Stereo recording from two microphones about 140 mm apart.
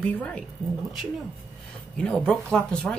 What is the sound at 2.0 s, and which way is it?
Speech, 5° left (ahead or behind).